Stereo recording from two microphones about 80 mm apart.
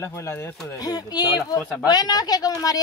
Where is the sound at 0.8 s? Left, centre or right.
Left.